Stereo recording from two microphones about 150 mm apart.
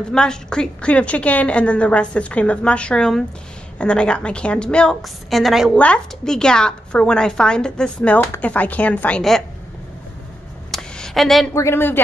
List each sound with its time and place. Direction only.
0.1 s a woman's voice: 5° left (ahead or behind)
10.7 s a sound: 5° left (ahead or behind)
11.5 s a woman's voice: 15° left (ahead or behind)